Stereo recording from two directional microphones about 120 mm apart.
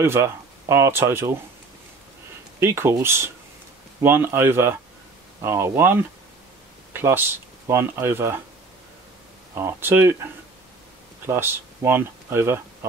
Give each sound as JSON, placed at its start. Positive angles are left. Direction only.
{"t": 0.0, "sound": "speech", "side_deg": -20}
{"t": 2.6, "sound": "speech", "side_deg": -20}
{"t": 9.6, "sound": "speech", "side_deg": -20}
{"t": 11.2, "sound": "speech", "side_deg": -20}